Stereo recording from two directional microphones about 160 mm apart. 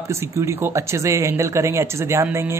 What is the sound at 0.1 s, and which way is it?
Speech, 15° right (ahead or behind).